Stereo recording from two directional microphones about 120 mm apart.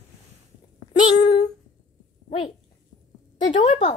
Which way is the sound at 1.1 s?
70° left (ahead or behind).